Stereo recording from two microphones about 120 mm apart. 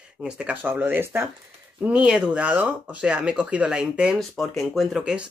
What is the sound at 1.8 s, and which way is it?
Speech, 10° right (ahead or behind).